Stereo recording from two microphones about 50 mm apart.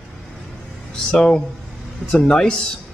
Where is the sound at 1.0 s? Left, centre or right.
Centre.